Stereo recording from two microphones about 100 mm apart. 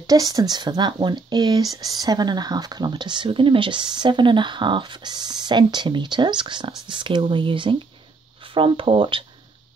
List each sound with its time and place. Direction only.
0.0 s speech: 40° right (ahead or behind); by 9.2 s 60° right (ahead or behind)